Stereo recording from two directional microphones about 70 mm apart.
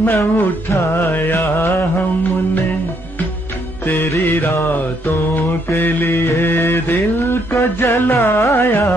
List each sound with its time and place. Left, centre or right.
0.1 s music: left
3.8 s music: left
4.6 s mantra: left
7.8 s music: left